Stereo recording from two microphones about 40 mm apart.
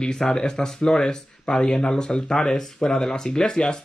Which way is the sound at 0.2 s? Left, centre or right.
Centre.